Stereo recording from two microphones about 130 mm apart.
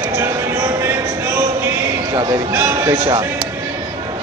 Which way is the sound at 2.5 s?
15° right (ahead or behind).